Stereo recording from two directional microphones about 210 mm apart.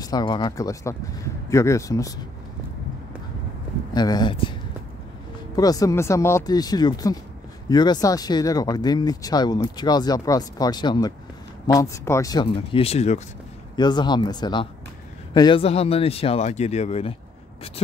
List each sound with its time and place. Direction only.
0.0 s speech: 20° left (ahead or behind)
3.9 s speech: 20° left (ahead or behind)
5.6 s speech: 15° left (ahead or behind)
13.7 s speech: 20° left (ahead or behind)